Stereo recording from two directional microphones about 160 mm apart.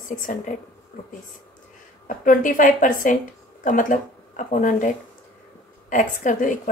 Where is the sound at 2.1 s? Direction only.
55° left (ahead or behind).